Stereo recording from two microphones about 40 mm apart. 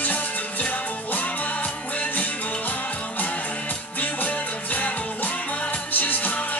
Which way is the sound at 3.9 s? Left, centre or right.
Left.